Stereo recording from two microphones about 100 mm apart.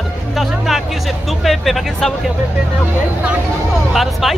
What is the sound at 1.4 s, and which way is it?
Speech, centre (ahead or behind).